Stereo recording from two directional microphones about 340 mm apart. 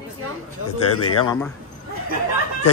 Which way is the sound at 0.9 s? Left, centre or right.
Left.